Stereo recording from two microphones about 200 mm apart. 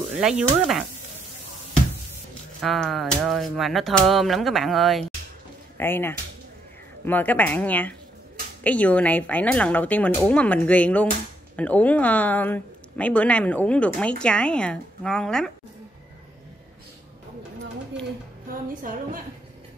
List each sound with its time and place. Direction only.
0.2 s speech: 5° right (ahead or behind)
2.6 s speech: centre (ahead or behind)
5.8 s a woman's voice: 10° left (ahead or behind)
18.5 s music: 45° right (ahead or behind)